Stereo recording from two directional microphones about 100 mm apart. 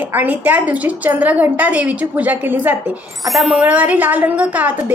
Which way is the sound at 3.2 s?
5° right (ahead or behind).